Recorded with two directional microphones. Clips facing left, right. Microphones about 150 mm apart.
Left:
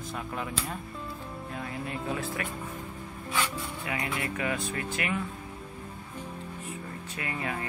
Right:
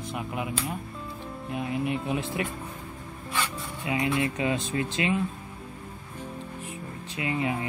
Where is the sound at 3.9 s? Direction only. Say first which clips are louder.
Right 8 dB; 20° right (ahead or behind).